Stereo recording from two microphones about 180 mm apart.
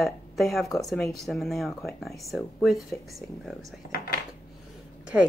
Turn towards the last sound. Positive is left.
turn(degrees=-10)  # may be behind; listen again after turning